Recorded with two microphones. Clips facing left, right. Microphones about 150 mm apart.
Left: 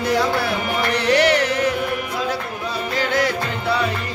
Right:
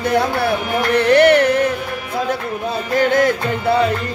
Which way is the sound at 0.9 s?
55° right (ahead or behind).